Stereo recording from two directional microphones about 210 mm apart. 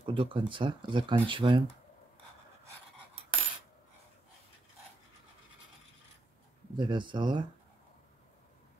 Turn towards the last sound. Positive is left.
turn(degrees=-20)  # may be behind; listen again after turning